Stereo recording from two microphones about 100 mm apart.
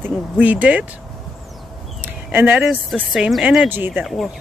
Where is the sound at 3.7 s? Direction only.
20° right (ahead or behind).